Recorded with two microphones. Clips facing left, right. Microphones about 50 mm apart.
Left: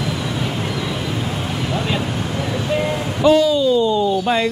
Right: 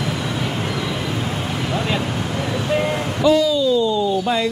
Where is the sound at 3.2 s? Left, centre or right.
Left.